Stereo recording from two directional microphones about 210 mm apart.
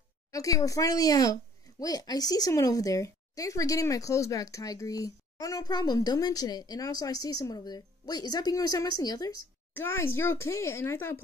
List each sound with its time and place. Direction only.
0.3 s speech: 15° left (ahead or behind)